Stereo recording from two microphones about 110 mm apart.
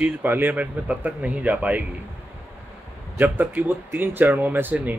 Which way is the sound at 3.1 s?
15° right (ahead or behind).